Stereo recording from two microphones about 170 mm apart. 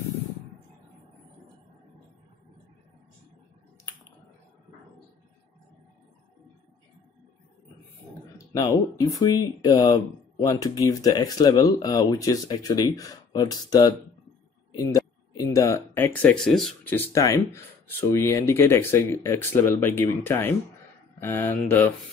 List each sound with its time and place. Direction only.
8.5 s speech: 20° left (ahead or behind); by 16.9 s centre (ahead or behind)
16.9 s speech: 20° left (ahead or behind)